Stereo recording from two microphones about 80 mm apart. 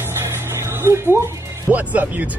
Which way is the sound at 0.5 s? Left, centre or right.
Right.